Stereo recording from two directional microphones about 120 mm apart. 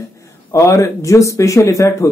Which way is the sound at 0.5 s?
25° left (ahead or behind).